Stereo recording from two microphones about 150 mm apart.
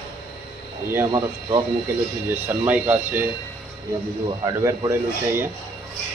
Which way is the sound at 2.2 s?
10° right (ahead or behind).